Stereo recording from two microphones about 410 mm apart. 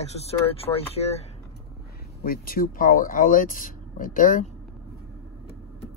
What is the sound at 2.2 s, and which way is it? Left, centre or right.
Speech, left.